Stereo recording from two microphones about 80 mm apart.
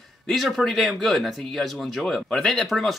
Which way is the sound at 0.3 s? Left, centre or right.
Centre.